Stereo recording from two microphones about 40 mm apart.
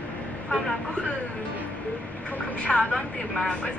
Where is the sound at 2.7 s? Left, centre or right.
Centre.